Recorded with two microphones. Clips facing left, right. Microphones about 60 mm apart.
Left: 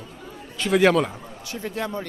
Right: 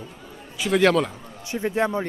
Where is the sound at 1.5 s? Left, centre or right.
Right.